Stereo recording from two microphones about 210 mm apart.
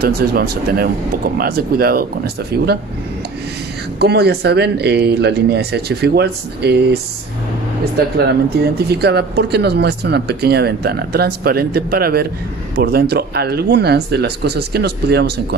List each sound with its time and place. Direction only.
0.0 s speech: 45° right (ahead or behind)
4.0 s speech: 50° right (ahead or behind)
8.3 s speech: 50° right (ahead or behind)